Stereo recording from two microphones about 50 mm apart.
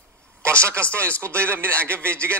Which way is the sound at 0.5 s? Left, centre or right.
Right.